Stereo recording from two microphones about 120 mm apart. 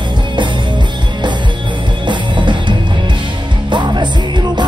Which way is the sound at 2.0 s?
40° right (ahead or behind).